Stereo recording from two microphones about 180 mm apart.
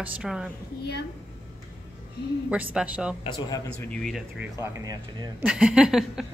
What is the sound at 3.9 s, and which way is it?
Speech, centre (ahead or behind).